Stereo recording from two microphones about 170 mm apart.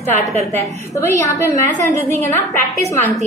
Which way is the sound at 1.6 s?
50° right (ahead or behind).